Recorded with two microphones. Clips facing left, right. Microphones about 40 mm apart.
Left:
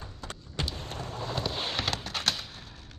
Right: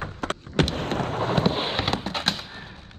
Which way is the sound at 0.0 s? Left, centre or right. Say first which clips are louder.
Right 12 dB; right.